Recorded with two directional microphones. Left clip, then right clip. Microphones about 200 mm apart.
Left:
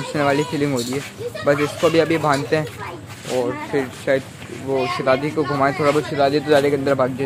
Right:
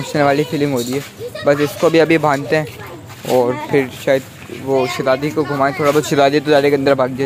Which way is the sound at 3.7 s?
25° right (ahead or behind).